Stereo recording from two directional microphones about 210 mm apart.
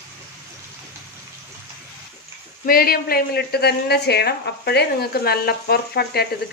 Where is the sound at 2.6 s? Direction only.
45° left (ahead or behind).